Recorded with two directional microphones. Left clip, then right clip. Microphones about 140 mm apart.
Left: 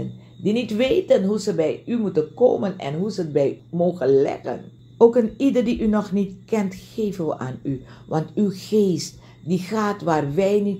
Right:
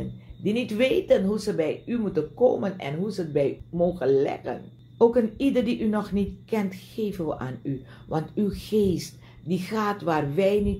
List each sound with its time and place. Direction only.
0.4 s speech: 40° left (ahead or behind)